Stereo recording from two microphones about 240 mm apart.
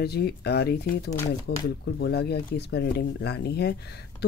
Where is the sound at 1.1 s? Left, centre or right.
Centre.